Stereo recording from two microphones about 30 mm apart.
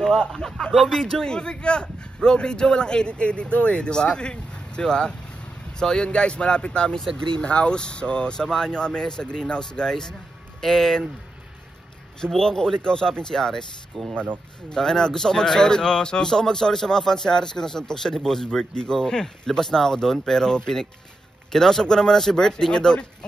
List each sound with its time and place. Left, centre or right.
0.0 s speech: centre
1.3 s speech: left
6.0 s speech: left
8.4 s speech: centre
10.6 s speech: centre
12.4 s speech: centre